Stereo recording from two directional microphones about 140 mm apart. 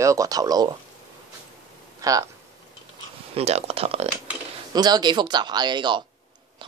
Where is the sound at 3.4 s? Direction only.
45° right (ahead or behind).